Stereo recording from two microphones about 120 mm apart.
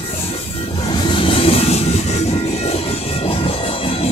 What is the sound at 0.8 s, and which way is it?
Train, 40° left (ahead or behind).